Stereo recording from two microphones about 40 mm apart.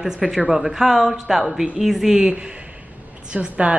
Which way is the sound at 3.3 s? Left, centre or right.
Right.